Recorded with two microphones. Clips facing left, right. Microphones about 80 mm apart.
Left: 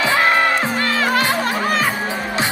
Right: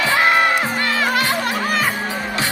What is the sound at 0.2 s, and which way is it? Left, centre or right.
Music, centre.